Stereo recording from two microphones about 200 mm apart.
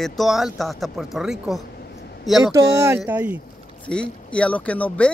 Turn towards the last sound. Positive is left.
turn(degrees=5)  # may be behind; listen again after turning